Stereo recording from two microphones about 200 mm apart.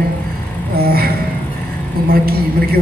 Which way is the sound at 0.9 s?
50° right (ahead or behind).